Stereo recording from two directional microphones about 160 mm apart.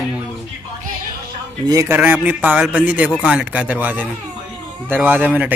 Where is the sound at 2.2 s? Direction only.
10° right (ahead or behind).